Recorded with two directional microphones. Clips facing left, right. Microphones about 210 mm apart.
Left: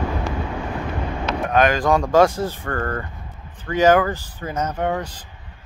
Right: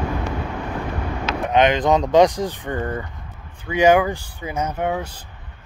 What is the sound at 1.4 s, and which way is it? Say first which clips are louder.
Speech: right 1 dB; 20° right (ahead or behind).